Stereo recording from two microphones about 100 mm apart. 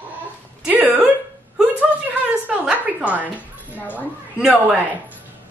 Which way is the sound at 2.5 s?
15° right (ahead or behind).